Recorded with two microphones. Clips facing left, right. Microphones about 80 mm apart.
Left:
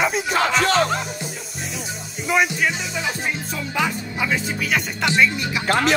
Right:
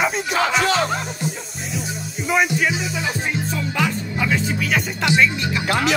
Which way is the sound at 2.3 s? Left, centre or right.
Centre.